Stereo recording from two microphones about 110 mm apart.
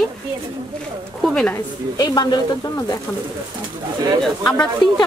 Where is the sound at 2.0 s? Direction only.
40° left (ahead or behind).